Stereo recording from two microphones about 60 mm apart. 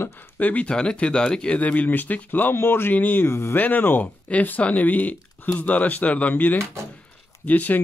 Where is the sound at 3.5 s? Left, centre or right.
Left.